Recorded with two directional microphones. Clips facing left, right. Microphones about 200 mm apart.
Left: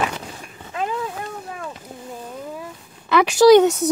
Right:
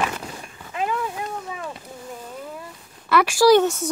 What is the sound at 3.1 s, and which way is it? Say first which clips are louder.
Speech: left 4 dB; 20° left (ahead or behind).